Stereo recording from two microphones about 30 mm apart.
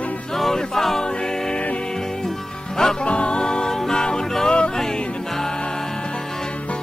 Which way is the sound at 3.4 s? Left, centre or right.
Left.